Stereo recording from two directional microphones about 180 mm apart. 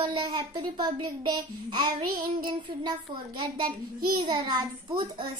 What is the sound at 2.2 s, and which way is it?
Speech, 25° right (ahead or behind).